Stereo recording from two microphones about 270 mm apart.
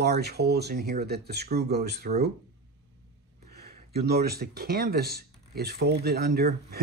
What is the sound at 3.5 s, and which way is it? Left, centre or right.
Speech, right.